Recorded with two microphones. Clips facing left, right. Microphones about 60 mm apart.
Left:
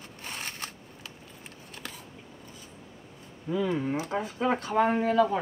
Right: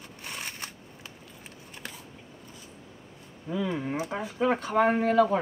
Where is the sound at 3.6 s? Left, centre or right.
Right.